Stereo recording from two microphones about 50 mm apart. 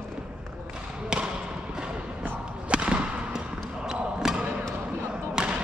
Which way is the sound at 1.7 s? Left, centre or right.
Centre.